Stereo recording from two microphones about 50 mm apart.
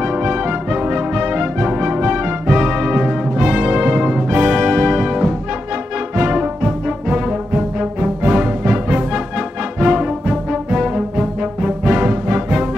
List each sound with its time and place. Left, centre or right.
0.0 s music: right
12.1 s music: right